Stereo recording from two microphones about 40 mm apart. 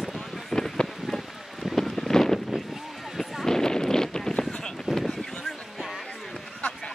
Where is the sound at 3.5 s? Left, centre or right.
Centre.